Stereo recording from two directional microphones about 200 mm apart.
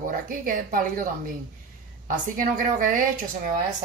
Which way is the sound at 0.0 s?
45° right (ahead or behind).